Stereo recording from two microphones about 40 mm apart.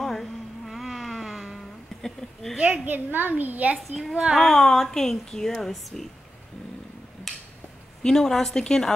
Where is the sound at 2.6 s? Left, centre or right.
Right.